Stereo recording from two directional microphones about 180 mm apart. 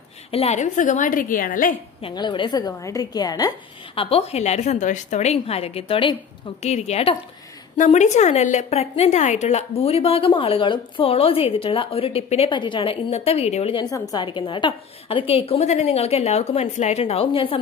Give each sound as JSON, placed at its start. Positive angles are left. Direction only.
{"t": 0.3, "sound": "a woman's voice", "side_deg": 35}
{"t": 2.0, "sound": "a woman's voice", "side_deg": 25}